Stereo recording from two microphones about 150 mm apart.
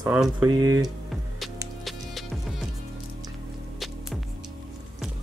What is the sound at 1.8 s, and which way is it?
Music, centre (ahead or behind).